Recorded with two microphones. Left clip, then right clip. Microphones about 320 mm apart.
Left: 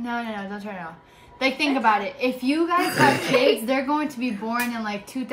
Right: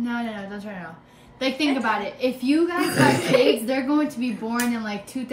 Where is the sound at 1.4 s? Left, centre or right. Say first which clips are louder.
Left 2 dB; centre.